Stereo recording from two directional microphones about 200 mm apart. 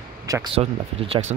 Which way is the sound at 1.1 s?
35° right (ahead or behind).